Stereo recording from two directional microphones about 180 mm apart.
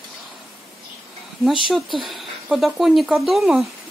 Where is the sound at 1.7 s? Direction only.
Centre (ahead or behind).